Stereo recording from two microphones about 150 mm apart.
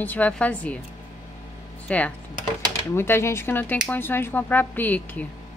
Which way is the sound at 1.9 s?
10° left (ahead or behind).